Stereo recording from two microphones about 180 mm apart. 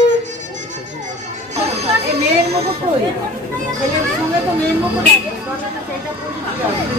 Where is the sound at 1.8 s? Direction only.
35° right (ahead or behind).